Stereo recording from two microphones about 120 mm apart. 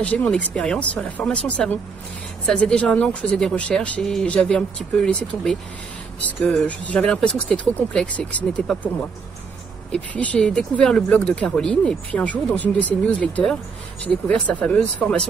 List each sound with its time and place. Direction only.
0.0 s speech: 10° left (ahead or behind)
9.9 s speech: 10° left (ahead or behind)